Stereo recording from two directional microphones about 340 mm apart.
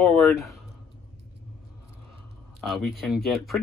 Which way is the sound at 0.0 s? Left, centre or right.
Centre.